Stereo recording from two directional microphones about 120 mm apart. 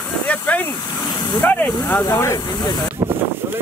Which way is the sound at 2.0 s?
25° left (ahead or behind).